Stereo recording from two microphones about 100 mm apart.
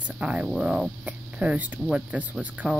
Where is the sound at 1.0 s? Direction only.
15° right (ahead or behind).